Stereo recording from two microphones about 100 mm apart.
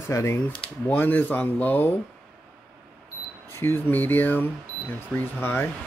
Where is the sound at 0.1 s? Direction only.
30° left (ahead or behind).